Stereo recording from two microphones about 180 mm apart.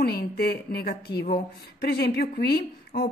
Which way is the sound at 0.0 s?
60° left (ahead or behind).